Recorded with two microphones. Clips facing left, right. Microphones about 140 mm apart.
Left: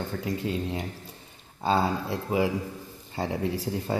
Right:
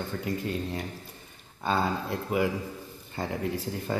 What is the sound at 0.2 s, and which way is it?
Speech, 25° left (ahead or behind).